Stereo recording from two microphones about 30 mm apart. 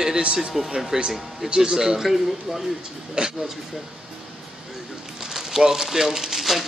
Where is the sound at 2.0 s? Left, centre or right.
Centre.